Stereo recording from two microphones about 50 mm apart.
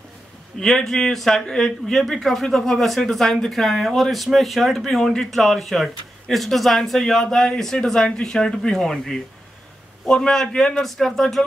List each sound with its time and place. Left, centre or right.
0.7 s speech: centre